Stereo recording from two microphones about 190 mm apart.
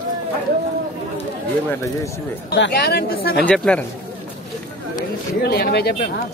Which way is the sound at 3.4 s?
5° left (ahead or behind).